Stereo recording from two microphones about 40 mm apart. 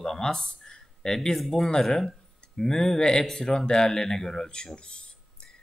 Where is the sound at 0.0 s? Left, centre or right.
Centre.